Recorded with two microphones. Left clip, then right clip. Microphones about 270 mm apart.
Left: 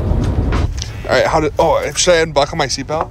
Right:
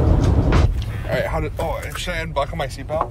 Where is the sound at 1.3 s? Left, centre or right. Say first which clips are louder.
Left 12 dB; left.